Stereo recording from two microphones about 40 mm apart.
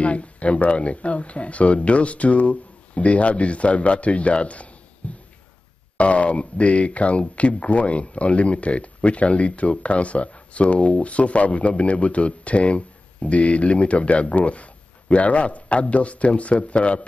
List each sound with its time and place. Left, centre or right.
0.0 s speech: left
5.0 s music: left
5.9 s speech: left